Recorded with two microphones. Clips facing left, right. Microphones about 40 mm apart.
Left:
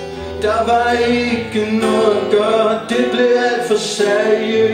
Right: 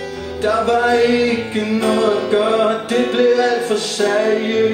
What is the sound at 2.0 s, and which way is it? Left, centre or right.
Music, left.